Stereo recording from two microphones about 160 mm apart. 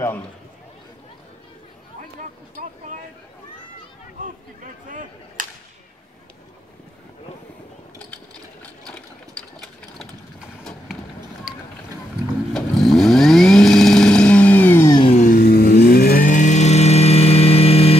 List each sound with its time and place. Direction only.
5.4 s whip: 55° right (ahead or behind)
8.6 s sewing machine: 5° left (ahead or behind)
12.5 s vehicle: centre (ahead or behind)
15.1 s vehicle: 60° left (ahead or behind)
16.3 s vehicle: 50° left (ahead or behind)